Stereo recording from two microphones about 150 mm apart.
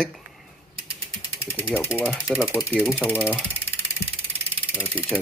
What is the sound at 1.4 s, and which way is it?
Speech, 15° left (ahead or behind).